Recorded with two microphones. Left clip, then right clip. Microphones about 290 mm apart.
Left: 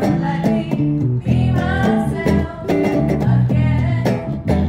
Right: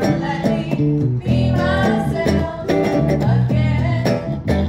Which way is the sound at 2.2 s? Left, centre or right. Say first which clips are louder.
Even; centre.